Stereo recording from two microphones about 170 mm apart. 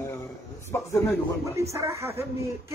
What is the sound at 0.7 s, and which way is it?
Speech, 15° left (ahead or behind).